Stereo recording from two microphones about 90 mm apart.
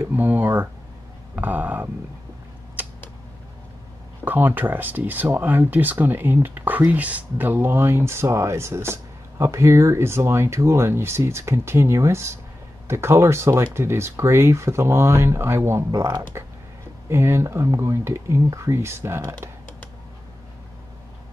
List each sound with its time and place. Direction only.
0.0 s speech: 25° right (ahead or behind)
2.8 s a sound: 20° right (ahead or behind)
4.2 s speech: 20° right (ahead or behind)